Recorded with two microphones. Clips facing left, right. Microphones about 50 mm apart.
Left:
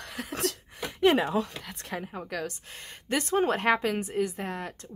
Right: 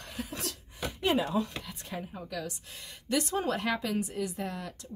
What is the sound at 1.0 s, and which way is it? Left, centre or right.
A woman's voice, left.